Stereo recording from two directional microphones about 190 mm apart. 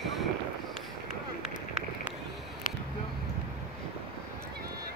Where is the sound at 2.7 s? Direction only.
45° left (ahead or behind).